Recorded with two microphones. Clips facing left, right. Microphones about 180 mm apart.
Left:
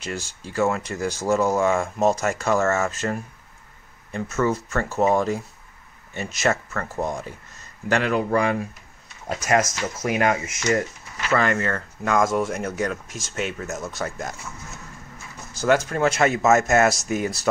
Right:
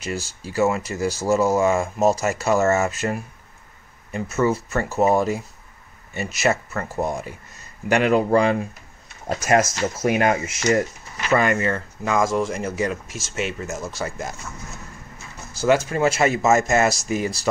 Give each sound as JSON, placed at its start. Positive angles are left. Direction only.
{"t": 0.0, "sound": "speech", "side_deg": -5}
{"t": 7.9, "sound": "speech", "side_deg": -20}
{"t": 11.1, "sound": "speech", "side_deg": -15}
{"t": 15.5, "sound": "a sound", "side_deg": -5}
{"t": 15.9, "sound": "speech", "side_deg": -5}